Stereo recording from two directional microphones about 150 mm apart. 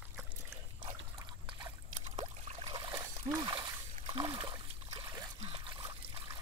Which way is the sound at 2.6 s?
25° right (ahead or behind).